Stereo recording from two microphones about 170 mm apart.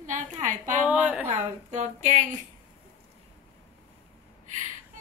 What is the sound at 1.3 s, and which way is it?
Speech, 45° right (ahead or behind).